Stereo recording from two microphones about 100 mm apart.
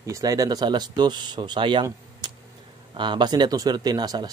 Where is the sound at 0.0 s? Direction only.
35° right (ahead or behind).